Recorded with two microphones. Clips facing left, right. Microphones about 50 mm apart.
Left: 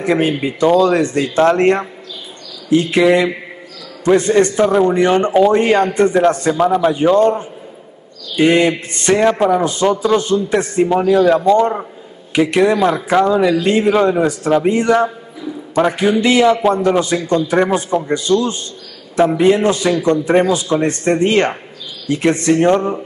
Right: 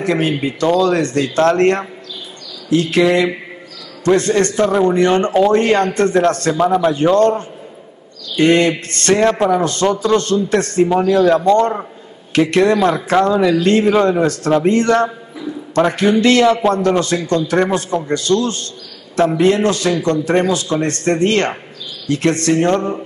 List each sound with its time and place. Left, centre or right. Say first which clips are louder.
0.0 s a man's voice: left 1 dB; centre
3.0 s a man's voice: left 1 dB; centre